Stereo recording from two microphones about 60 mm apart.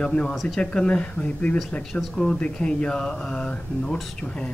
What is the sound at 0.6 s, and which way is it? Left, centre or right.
Speech, centre.